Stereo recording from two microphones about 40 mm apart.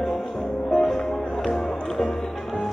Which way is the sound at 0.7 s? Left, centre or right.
Centre.